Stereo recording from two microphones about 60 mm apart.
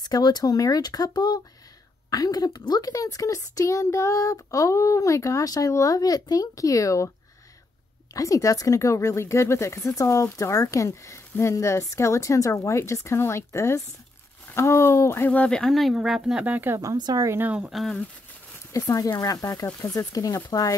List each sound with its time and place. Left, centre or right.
0.1 s a woman's voice: left
8.1 s a woman's voice: left
15.2 s speech: left
15.7 s speech: centre
16.4 s speech: right
16.7 s speech: right
17.6 s speech: centre
18.9 s speech: left
20.0 s speech: left